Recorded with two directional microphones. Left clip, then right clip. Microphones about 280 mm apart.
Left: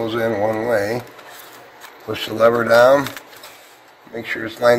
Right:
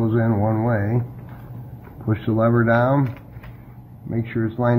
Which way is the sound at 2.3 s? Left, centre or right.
Left.